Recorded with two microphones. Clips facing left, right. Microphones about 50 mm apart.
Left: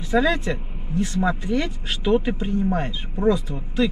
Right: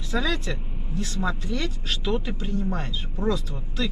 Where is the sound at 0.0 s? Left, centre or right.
Left.